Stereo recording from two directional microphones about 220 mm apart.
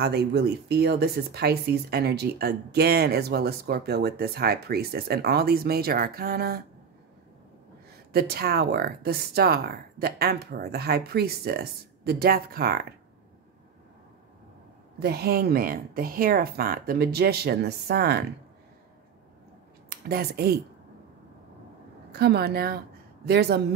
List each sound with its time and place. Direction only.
0.0 s speech: 45° right (ahead or behind)
8.1 s speech: 45° right (ahead or behind)
15.0 s speech: 45° right (ahead or behind)
19.9 s speech: 45° right (ahead or behind)
22.1 s speech: 45° right (ahead or behind)